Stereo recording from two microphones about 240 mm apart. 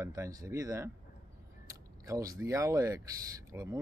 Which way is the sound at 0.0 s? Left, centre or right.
Centre.